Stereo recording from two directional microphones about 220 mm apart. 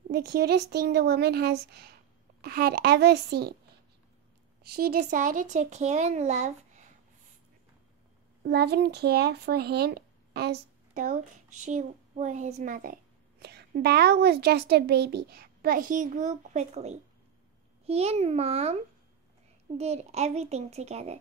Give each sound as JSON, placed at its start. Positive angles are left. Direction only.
{"t": 0.1, "sound": "speech", "side_deg": -50}
{"t": 4.7, "sound": "speech", "side_deg": -40}
{"t": 8.4, "sound": "a child's voice", "side_deg": -50}
{"t": 19.8, "sound": "a child's voice", "side_deg": -30}